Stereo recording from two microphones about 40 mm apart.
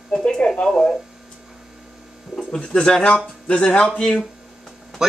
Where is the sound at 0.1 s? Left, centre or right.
Left.